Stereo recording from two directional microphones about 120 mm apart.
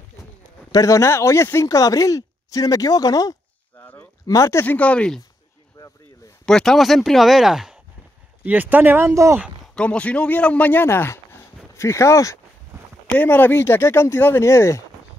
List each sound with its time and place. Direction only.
0.7 s speech: 30° left (ahead or behind)
3.8 s a sound: 15° left (ahead or behind)
4.3 s speech: 25° left (ahead or behind)
4.7 s speech: 10° left (ahead or behind)
5.8 s a sound: 25° left (ahead or behind)
6.4 s speech: 5° left (ahead or behind)
8.5 s speech: 15° right (ahead or behind)
9.8 s speech: 10° left (ahead or behind)
13.0 s speech: 15° left (ahead or behind)